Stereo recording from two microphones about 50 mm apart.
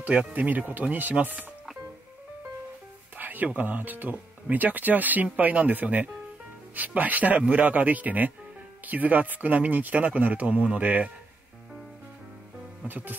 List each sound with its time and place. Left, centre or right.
0.0 s speech: centre
0.3 s speech: right
3.2 s a sound: right
3.5 s speech: right
12.8 s speech: right